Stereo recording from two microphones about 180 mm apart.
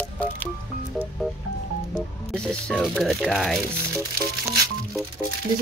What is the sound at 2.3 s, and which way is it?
Speech, 5° left (ahead or behind).